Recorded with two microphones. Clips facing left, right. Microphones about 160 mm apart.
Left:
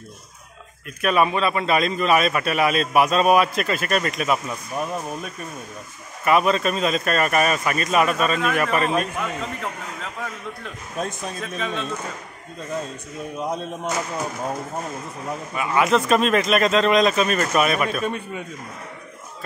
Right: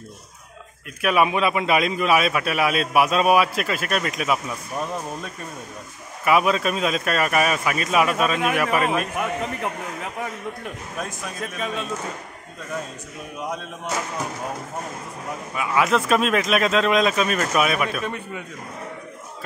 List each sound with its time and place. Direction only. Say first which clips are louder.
1.0 s a man's voice: even; 10° right (ahead or behind)
6.2 s a man's voice: left 1 dB; 5° right (ahead or behind)
11.0 s a man's voice: left 5 dB; 25° left (ahead or behind)
11.5 s a man's voice: left 1 dB; 5° right (ahead or behind)
13.4 s speech: left 3 dB; 30° left (ahead or behind)
15.5 s a man's voice: left 1 dB; centre (ahead or behind)
18.0 s a man's voice: left 3 dB; 20° left (ahead or behind)